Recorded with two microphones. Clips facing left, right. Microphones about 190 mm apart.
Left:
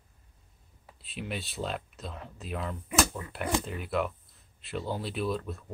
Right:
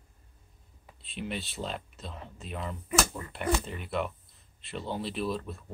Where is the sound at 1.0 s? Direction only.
Centre (ahead or behind).